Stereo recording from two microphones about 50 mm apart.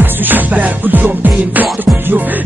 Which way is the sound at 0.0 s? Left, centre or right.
Right.